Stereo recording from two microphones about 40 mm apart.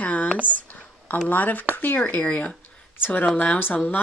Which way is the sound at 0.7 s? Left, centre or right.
Left.